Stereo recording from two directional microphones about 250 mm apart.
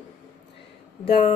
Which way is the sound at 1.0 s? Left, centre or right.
Left.